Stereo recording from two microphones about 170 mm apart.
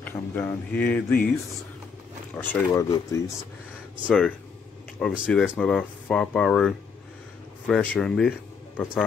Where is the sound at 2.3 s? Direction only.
15° left (ahead or behind).